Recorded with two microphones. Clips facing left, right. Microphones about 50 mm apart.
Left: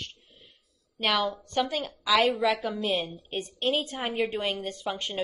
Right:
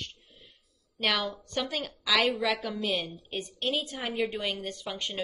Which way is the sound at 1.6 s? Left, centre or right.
Centre.